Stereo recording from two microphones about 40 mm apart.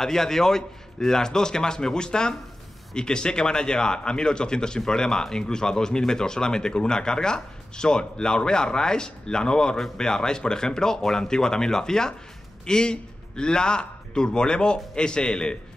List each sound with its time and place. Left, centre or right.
0.0 s speech: centre